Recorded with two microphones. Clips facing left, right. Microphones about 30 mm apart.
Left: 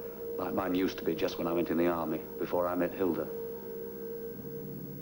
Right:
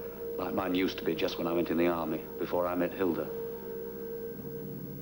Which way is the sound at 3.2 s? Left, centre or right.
Right.